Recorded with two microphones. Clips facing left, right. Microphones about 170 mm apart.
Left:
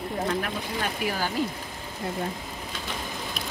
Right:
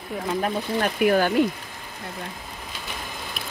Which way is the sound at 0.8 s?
60° right (ahead or behind).